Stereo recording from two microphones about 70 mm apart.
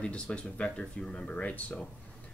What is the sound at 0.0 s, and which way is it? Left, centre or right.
Speech, centre.